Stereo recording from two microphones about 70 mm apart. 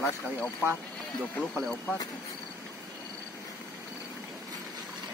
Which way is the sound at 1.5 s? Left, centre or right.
Centre.